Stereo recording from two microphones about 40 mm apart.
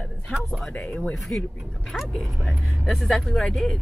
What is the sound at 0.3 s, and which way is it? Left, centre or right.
Speech, left.